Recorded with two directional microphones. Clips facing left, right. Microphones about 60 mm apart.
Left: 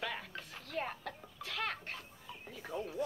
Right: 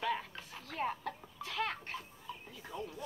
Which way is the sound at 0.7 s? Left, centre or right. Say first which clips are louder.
Right 3 dB; centre.